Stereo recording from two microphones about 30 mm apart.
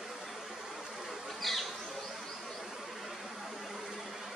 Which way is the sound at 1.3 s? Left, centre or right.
Centre.